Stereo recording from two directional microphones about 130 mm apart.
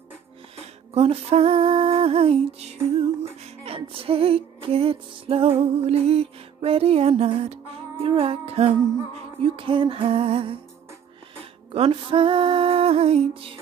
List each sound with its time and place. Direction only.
0.9 s music: 50° right (ahead or behind)
11.7 s music: 45° right (ahead or behind)